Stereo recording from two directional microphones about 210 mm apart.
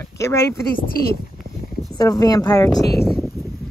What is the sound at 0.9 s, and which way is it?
Speech, 45° left (ahead or behind).